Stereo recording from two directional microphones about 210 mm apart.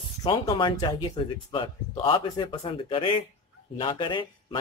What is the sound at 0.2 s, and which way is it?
Speech, 20° left (ahead or behind).